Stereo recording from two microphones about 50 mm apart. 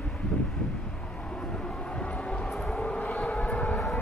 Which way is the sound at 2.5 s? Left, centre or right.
Centre.